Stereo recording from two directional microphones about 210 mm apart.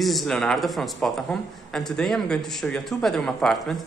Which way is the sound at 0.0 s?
Centre (ahead or behind).